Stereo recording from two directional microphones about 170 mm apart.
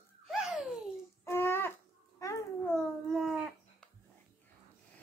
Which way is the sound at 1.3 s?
15° left (ahead or behind).